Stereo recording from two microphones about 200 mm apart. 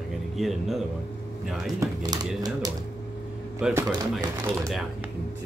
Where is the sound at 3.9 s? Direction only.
20° right (ahead or behind).